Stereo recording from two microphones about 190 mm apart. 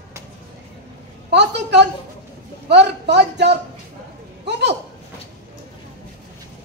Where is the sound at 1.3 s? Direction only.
65° right (ahead or behind).